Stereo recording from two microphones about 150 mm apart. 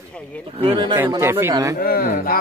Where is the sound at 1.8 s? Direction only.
80° left.